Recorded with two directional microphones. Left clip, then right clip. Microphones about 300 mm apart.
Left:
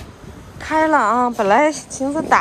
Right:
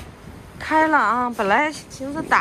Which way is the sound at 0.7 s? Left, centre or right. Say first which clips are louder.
Left 2 dB; centre.